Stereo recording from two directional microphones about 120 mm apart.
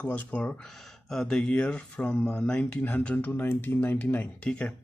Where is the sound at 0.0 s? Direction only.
10° left (ahead or behind).